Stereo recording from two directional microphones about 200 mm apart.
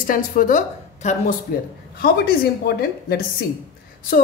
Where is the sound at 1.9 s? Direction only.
50° left (ahead or behind).